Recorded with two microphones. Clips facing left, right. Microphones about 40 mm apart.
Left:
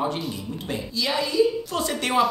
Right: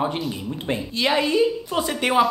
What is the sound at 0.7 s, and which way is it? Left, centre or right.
Speech, right.